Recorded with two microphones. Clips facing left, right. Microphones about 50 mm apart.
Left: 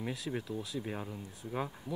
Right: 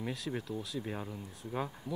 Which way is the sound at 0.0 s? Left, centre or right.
Centre.